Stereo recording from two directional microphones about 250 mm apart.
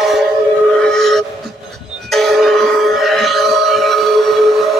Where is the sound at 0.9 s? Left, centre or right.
Centre.